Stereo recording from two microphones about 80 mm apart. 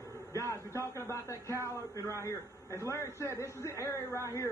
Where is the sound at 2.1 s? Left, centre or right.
Left.